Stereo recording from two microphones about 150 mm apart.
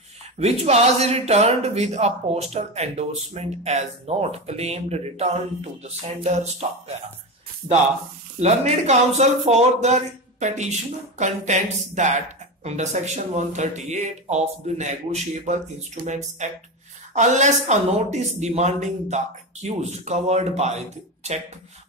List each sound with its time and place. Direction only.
0.4 s speech: 45° right (ahead or behind)
8.4 s speech: 50° right (ahead or behind)